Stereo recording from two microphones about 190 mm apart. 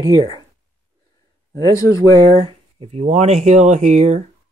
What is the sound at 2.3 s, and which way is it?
Speech, 30° right (ahead or behind).